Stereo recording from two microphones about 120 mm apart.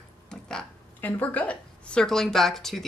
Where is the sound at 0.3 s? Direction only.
5° left (ahead or behind).